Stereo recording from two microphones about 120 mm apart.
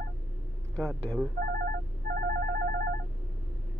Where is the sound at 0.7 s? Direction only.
Centre (ahead or behind).